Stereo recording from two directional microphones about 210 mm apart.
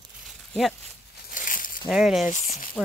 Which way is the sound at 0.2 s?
Centre (ahead or behind).